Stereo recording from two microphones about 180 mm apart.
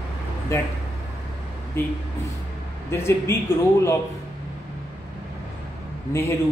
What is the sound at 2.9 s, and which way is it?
Speech, 15° left (ahead or behind).